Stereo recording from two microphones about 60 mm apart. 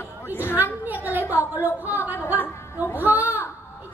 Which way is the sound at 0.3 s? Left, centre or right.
Left.